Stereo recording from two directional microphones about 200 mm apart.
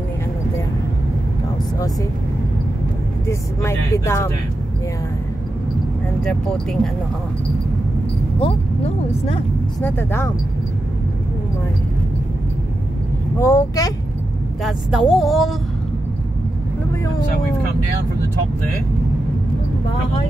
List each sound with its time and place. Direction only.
3.3 s speech: 15° left (ahead or behind)
6.2 s speech: centre (ahead or behind)
8.4 s speech: 30° left (ahead or behind)
9.8 s speech: 10° left (ahead or behind)
13.4 s speech: 15° left (ahead or behind)
14.6 s speech: centre (ahead or behind)